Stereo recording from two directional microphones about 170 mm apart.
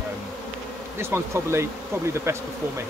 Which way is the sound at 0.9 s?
15° right (ahead or behind).